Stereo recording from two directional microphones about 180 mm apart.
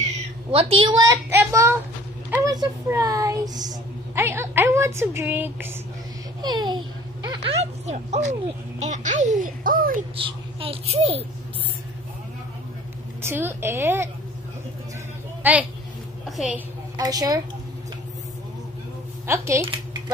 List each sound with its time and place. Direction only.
0.5 s a child's voice: 30° right (ahead or behind); by 5.7 s 10° right (ahead or behind)
6.4 s a child's voice: 25° right (ahead or behind); by 10.0 s 50° right (ahead or behind)
10.1 s speech: 30° right (ahead or behind)
13.2 s speech: 15° right (ahead or behind)
15.4 s a woman's voice: 10° right (ahead or behind)
16.9 s a woman's voice: 20° right (ahead or behind)
19.2 s speech: 15° right (ahead or behind)